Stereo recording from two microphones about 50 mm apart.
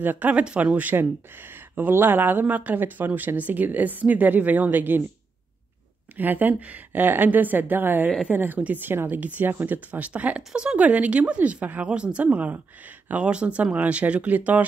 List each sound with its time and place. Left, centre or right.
0.0 s a woman's voice: right
0.3 s speech: right
0.9 s a woman's voice: right
6.1 s a woman's voice: right
9.8 s speech: right
11.8 s a woman's voice: right